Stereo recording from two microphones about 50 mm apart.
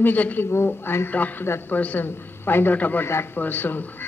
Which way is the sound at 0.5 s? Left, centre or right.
Left.